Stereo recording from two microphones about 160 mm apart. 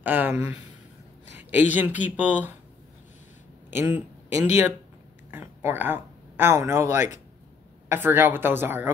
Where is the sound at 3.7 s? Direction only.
15° right (ahead or behind).